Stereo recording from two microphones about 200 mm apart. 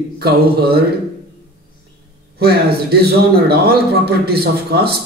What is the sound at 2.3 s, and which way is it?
A man's voice, 50° right (ahead or behind).